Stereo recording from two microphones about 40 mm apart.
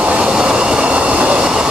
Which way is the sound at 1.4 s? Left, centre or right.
Centre.